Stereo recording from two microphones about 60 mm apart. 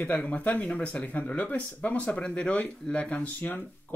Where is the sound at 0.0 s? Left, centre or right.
Left.